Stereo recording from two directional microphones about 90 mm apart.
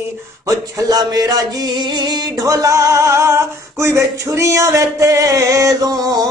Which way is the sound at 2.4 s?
35° right (ahead or behind).